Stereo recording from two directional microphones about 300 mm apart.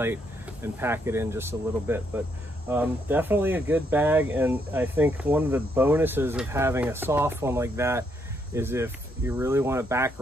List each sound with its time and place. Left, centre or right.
0.0 s speech: centre